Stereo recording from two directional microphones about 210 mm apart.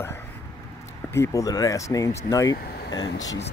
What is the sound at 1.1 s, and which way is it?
Speech, 15° left (ahead or behind).